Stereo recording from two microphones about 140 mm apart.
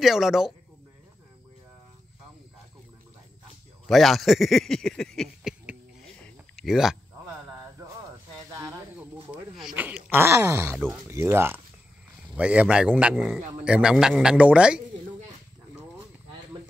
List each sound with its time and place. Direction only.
0.0 s speech: 5° right (ahead or behind)
3.8 s speech: centre (ahead or behind)
6.1 s a sound: 5° left (ahead or behind)
8.5 s snake: 20° right (ahead or behind)
8.9 s a sound: 5° right (ahead or behind)
10.1 s speech: 15° right (ahead or behind)